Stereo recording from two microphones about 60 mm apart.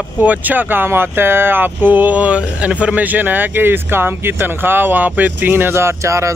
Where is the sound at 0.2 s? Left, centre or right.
Right.